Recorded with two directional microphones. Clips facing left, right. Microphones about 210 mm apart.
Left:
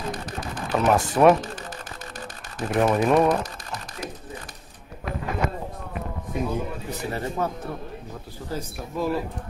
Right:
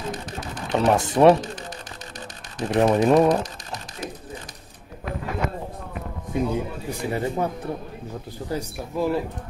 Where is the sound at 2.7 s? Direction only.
35° right (ahead or behind).